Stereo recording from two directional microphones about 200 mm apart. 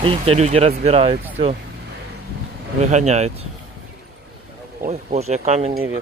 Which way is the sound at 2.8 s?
35° right (ahead or behind).